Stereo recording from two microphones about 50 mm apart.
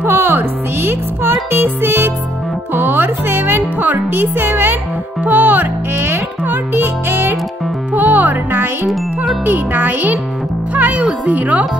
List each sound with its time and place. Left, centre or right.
0.0 s music: right
5.2 s a child's voice: right
5.9 s music: right
6.4 s music: right
7.9 s music: right
8.8 s jingle: centre
9.4 s a child's voice: right
10.7 s music: right
11.2 s a child's voice: right